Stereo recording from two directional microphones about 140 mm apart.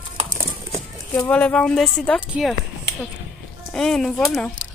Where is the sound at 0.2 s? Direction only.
65° right (ahead or behind).